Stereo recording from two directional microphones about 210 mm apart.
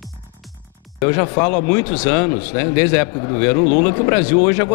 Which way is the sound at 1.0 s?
15° left (ahead or behind).